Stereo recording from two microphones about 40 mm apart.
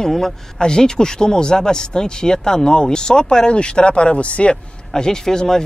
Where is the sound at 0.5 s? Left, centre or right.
Centre.